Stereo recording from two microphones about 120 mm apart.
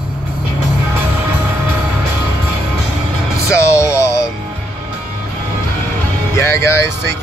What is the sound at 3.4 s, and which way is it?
Speech, 25° left (ahead or behind).